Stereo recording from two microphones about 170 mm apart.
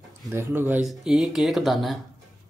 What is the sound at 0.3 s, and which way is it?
Speech, 15° right (ahead or behind).